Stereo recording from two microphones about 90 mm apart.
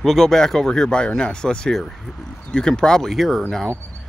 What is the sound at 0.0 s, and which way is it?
Speech, 5° left (ahead or behind).